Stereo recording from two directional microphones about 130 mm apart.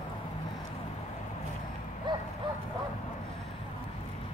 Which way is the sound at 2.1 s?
35° right (ahead or behind).